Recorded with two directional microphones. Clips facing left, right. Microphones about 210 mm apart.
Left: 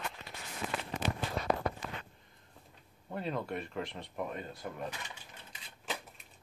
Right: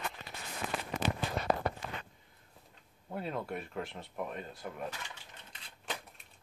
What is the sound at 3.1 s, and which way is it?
Speech, 5° right (ahead or behind).